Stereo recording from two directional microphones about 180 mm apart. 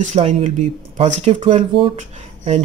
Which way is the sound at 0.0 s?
40° right (ahead or behind).